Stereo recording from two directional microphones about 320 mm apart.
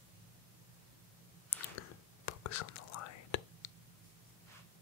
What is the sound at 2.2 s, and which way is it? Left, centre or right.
Whispering, left.